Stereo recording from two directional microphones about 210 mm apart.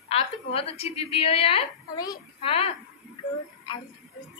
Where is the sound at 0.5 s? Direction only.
30° left (ahead or behind).